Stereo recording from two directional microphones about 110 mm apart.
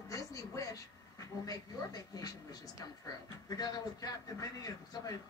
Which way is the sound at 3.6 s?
35° left (ahead or behind).